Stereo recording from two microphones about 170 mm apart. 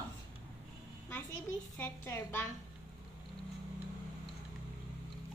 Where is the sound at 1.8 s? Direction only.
15° left (ahead or behind).